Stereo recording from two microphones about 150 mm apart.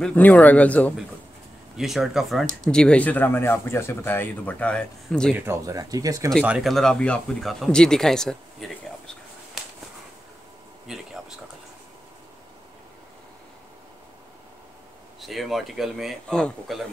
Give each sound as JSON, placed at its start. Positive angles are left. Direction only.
{"t": 0.0, "sound": "speech", "side_deg": 10}
{"t": 1.8, "sound": "speech", "side_deg": 0}
{"t": 5.3, "sound": "speech", "side_deg": -15}
{"t": 6.4, "sound": "speech", "side_deg": -5}
{"t": 10.9, "sound": "a sound", "side_deg": 0}
{"t": 15.1, "sound": "speech", "side_deg": 0}